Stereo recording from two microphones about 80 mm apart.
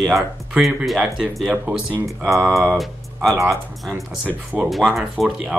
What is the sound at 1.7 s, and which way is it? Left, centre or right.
Speech, right.